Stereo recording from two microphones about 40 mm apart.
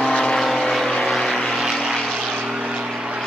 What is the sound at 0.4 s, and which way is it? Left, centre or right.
Vehicle, centre.